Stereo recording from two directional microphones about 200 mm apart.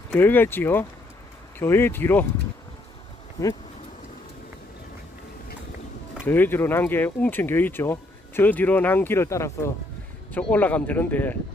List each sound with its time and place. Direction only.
0.1 s speech: 10° left (ahead or behind)
3.4 s speech: 20° left (ahead or behind)
6.2 s speech: 10° left (ahead or behind)